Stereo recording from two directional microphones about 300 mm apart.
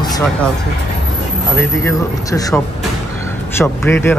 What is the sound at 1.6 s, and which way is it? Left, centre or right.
Speech, centre.